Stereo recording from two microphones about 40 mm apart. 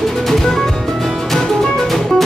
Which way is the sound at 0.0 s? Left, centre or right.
Centre.